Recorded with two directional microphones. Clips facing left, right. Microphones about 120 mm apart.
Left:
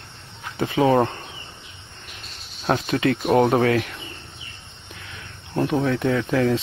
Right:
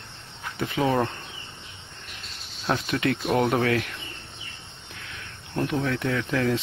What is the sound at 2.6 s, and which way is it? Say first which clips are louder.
Speech: left 4 dB; 35° left (ahead or behind).